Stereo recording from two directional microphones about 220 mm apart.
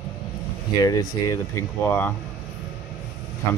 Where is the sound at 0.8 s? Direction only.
15° left (ahead or behind).